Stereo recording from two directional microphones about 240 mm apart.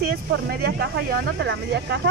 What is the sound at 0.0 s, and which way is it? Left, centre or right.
Speech, right.